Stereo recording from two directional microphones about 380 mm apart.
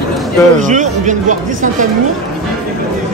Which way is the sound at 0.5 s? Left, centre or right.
Centre.